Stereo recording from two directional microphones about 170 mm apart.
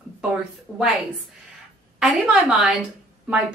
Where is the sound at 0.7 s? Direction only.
5° left (ahead or behind).